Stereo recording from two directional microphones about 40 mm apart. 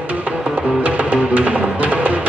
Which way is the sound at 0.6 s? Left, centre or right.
Right.